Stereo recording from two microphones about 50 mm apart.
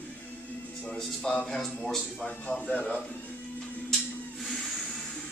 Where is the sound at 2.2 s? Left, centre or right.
Left.